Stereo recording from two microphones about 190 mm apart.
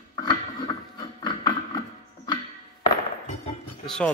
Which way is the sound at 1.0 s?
20° left (ahead or behind).